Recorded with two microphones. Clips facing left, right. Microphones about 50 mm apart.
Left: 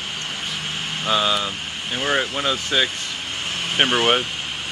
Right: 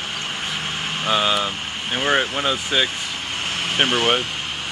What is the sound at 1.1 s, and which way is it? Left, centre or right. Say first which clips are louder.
Speech: right 1 dB; centre.